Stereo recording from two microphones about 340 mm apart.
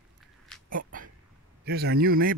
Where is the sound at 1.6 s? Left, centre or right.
Right.